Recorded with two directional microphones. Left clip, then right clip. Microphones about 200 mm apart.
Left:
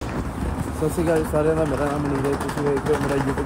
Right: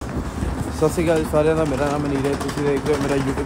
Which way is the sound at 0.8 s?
35° right (ahead or behind).